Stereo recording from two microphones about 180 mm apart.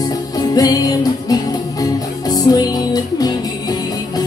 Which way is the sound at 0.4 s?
20° left (ahead or behind).